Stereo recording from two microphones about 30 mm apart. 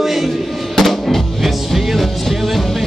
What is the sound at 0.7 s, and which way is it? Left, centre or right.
Music, centre.